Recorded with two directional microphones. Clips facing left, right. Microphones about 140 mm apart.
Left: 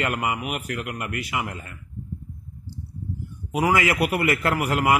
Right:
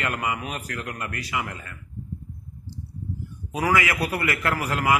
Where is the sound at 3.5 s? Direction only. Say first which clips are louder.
Left 2 dB; 20° left (ahead or behind).